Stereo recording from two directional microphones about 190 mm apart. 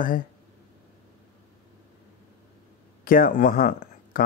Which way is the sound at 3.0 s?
45° left (ahead or behind).